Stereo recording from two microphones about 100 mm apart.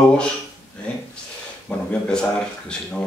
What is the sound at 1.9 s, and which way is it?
Speech, 10° left (ahead or behind).